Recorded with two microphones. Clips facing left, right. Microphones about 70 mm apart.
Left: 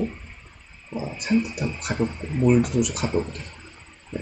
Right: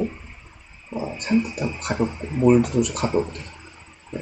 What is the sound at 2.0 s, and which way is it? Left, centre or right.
Speech, centre.